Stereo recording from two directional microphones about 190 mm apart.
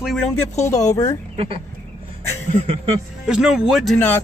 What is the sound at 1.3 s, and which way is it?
Speech, 30° right (ahead or behind).